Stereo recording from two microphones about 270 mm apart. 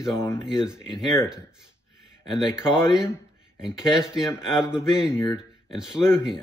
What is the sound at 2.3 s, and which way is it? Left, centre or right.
Speech, centre.